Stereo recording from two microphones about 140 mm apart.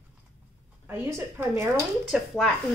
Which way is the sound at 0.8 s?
15° right (ahead or behind).